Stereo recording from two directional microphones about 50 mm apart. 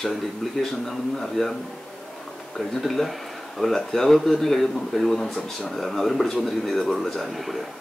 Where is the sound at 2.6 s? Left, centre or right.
Centre.